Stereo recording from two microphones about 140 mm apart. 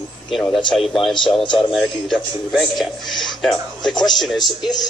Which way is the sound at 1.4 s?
40° left (ahead or behind).